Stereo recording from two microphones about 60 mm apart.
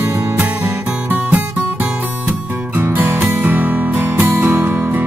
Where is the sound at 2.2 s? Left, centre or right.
Right.